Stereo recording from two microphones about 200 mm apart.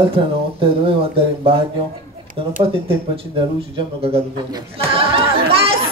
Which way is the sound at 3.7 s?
25° right (ahead or behind).